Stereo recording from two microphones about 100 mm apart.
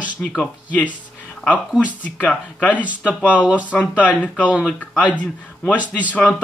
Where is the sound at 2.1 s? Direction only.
15° left (ahead or behind).